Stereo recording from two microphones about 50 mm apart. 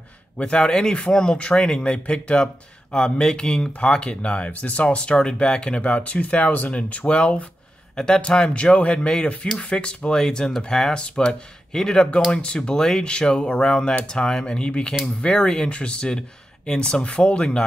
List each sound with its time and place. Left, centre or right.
0.4 s speech: centre
7.9 s speech: centre
10.1 s speech: centre